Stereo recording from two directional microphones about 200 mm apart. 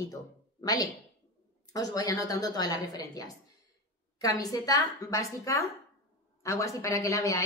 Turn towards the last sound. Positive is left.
turn(degrees=15)  # may be behind; listen again after turning